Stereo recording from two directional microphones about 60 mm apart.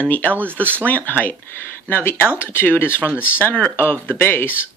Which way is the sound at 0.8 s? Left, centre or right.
Left.